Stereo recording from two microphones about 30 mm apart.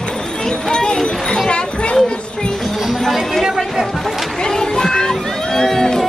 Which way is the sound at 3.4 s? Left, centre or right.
Centre.